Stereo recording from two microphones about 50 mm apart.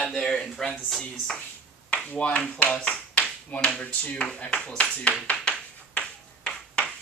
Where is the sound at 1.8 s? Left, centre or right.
Left.